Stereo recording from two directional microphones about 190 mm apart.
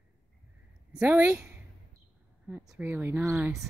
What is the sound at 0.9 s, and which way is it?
Speech, 10° right (ahead or behind).